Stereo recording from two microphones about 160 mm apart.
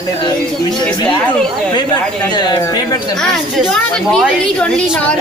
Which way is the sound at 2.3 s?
25° left (ahead or behind).